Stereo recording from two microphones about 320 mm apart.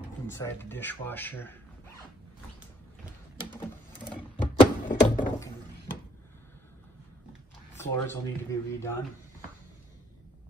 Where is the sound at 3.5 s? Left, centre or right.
Centre.